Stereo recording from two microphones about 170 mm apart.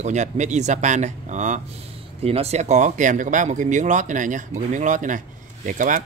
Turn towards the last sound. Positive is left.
turn(degrees=-50)  # may be behind; listen again after turning